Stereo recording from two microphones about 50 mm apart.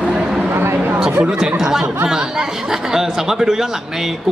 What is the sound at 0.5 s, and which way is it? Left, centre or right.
Speech, right.